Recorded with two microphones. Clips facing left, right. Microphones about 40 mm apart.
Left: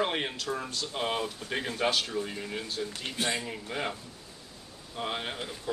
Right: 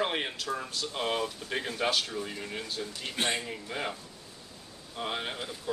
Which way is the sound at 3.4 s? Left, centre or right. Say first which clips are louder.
Left 1 dB; centre.